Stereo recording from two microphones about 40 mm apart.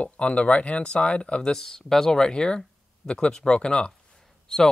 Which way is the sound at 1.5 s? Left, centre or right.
Centre.